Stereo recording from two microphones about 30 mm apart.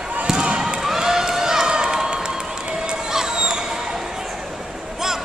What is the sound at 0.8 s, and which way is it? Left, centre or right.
Run, centre.